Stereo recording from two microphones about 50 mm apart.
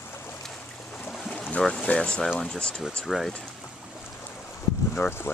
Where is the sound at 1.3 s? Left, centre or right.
Left.